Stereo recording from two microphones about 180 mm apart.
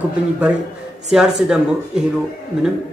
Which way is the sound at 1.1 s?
5° right (ahead or behind).